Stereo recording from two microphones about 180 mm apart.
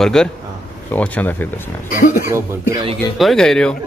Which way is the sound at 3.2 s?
Centre (ahead or behind).